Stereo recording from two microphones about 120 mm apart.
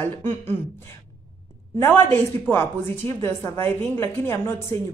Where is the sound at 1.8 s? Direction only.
20° left (ahead or behind).